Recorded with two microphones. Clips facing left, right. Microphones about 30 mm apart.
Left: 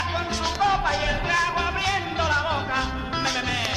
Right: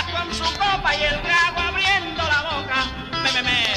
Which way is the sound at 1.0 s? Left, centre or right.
Right.